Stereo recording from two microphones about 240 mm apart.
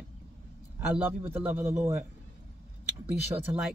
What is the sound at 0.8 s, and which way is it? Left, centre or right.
A man's voice, centre.